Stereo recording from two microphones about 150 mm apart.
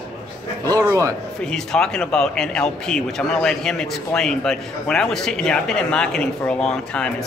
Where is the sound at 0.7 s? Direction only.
25° right (ahead or behind).